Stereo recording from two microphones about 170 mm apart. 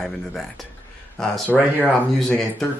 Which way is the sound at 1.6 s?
10° right (ahead or behind).